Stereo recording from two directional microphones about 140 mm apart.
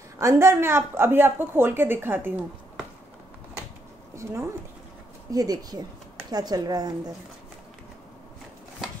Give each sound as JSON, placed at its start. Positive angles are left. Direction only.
{"t": 0.2, "sound": "a woman's voice", "side_deg": -20}
{"t": 4.1, "sound": "speech", "side_deg": -20}